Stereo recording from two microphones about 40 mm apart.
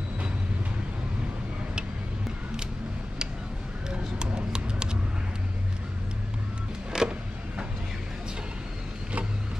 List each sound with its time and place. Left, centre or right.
4.2 s run: right
6.9 s vehicle: centre